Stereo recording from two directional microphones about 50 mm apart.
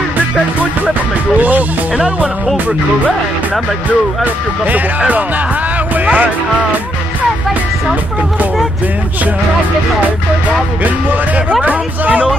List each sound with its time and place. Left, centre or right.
4.2 s speech: right
10.8 s speech: right